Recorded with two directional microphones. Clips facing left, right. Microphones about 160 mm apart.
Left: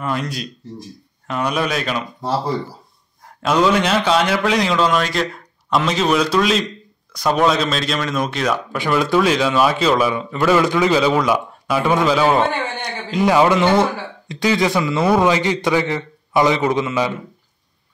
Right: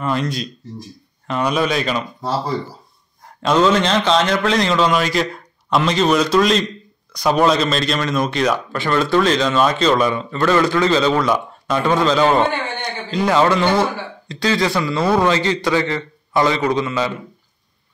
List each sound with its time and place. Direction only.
0.0 s a man's voice: 5° left (ahead or behind)
3.4 s a man's voice: 10° left (ahead or behind)